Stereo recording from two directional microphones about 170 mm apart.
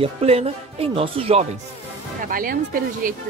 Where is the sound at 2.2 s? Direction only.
55° right (ahead or behind).